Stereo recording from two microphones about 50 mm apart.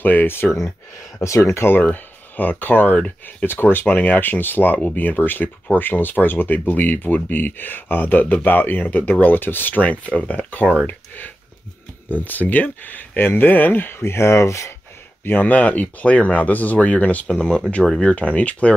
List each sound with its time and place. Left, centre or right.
0.0 s speech: left
1.2 s speech: left
1.7 s speech: left
3.4 s speech: left
3.8 s speech: left
15.2 s speech: left
17.3 s speech: centre